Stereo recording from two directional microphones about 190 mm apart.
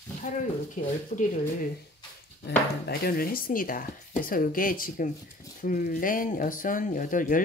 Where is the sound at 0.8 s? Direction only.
40° left (ahead or behind).